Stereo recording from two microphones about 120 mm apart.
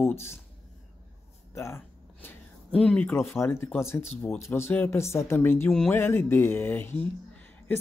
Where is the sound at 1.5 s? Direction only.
20° left (ahead or behind).